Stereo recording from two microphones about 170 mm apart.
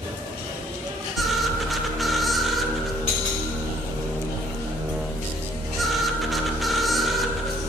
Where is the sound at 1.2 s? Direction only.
Centre (ahead or behind).